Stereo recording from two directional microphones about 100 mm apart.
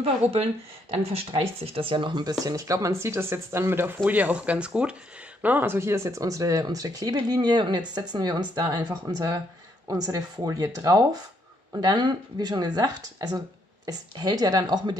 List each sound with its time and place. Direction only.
0.0 s speech: 90° right; by 2.3 s 50° right (ahead or behind)
2.4 s a woman's voice: 35° right (ahead or behind)